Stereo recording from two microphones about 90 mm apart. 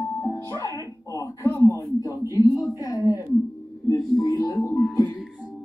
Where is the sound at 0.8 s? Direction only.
35° left (ahead or behind).